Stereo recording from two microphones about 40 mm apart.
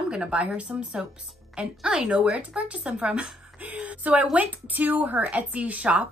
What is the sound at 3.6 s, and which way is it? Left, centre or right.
Speech, right.